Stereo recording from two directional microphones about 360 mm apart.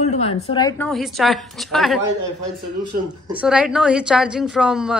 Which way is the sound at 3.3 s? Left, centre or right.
Centre.